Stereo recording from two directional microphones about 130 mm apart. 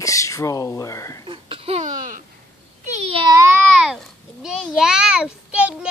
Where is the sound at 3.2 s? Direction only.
20° right (ahead or behind).